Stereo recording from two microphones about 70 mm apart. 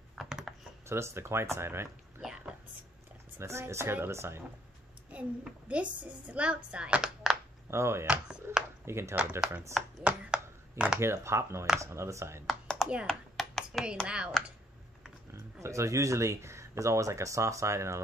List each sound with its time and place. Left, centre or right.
0.1 s computer keyboard: centre
0.8 s speech: right
3.3 s speech: right
5.4 s speech: centre
7.2 s a sound: centre
7.7 s speech: right
9.1 s speech: centre
10.0 s a sound: centre
11.0 s speech: right
12.7 s a sound: centre
14.0 s speech: centre
15.3 s speech: right